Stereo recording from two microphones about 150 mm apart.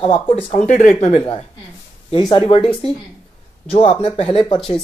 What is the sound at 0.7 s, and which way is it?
Speech, 55° left (ahead or behind).